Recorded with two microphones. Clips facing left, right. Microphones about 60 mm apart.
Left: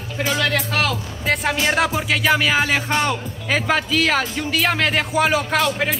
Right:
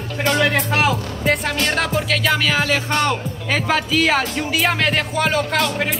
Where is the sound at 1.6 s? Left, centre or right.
Centre.